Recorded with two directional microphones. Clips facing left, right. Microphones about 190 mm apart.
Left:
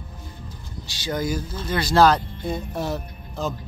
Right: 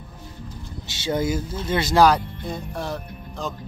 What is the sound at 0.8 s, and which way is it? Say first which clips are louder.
Speech: right 2 dB; 25° right (ahead or behind).